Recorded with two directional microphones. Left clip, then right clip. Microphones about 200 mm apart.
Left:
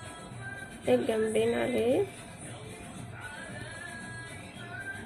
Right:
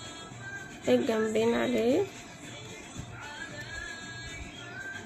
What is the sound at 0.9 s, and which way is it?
A woman's voice, 25° right (ahead or behind).